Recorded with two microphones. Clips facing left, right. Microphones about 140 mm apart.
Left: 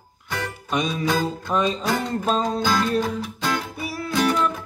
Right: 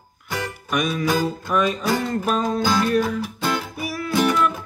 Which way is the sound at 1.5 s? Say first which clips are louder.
Right 1 dB; 30° left (ahead or behind).